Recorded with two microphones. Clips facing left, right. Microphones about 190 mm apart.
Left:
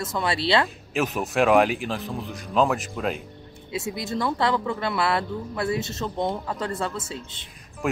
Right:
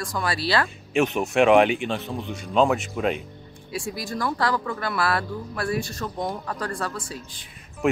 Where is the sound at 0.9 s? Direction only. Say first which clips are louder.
Right 3 dB; centre (ahead or behind).